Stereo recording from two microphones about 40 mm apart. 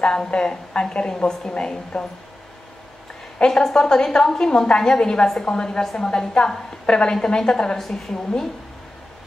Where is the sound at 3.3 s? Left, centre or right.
Centre.